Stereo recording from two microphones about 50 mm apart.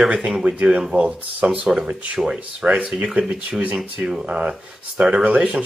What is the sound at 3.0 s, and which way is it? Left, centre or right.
Speech, right.